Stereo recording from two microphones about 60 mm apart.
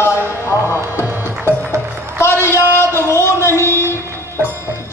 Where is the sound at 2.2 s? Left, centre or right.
Left.